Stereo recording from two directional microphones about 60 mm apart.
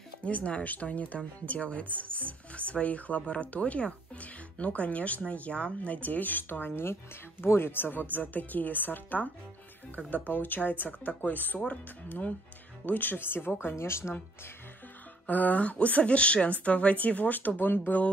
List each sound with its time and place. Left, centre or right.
0.2 s speech: left
15.2 s speech: left